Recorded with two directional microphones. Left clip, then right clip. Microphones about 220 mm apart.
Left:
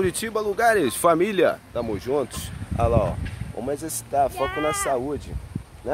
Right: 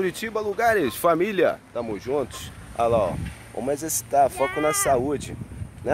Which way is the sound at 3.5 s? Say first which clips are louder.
Right 2 dB; 35° right (ahead or behind).